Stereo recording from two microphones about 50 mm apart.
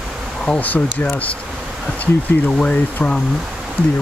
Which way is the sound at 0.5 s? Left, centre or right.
Left.